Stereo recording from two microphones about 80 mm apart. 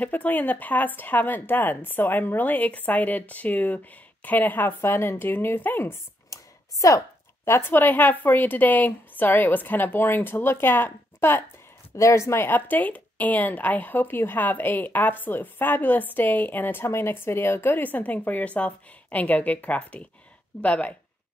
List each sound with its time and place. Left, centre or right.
0.0 s speech: left
6.3 s a sound: left
7.4 s speech: left
11.9 s speech: left; by 20.9 s centre